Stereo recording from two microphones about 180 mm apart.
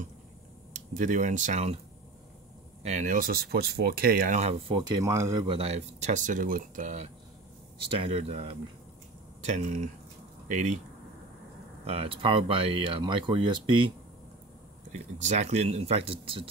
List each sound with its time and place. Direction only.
0.7 s speech: 45° right (ahead or behind)
2.8 s speech: 40° right (ahead or behind)
4.7 s speech: 25° right (ahead or behind); by 10.8 s 40° right (ahead or behind)
11.8 s speech: 30° right (ahead or behind)
14.9 s speech: 40° right (ahead or behind)